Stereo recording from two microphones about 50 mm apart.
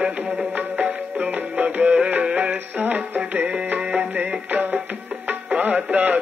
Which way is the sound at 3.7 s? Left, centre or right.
Right.